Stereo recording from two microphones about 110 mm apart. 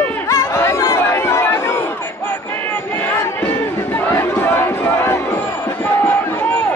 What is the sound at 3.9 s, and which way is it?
Crowd, 20° left (ahead or behind).